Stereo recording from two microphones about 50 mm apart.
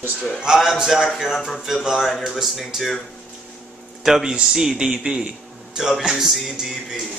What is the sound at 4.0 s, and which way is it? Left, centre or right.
A man's voice, centre.